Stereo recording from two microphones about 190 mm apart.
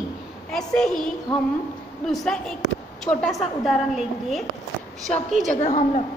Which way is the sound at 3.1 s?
Centre (ahead or behind).